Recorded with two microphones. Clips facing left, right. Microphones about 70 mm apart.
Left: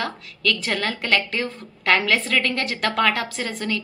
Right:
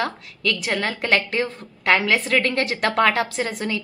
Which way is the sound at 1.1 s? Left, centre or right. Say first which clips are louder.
Right 2 dB; right.